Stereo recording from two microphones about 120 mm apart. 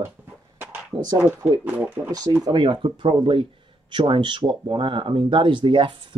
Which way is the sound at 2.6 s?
45° right (ahead or behind).